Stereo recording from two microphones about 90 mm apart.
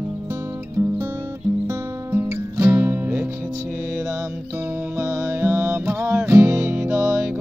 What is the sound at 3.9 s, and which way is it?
Mantra, 35° right (ahead or behind).